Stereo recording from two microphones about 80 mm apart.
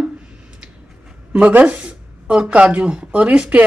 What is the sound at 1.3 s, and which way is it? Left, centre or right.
Speech, centre.